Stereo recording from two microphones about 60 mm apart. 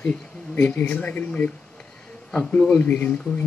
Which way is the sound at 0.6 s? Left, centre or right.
Left.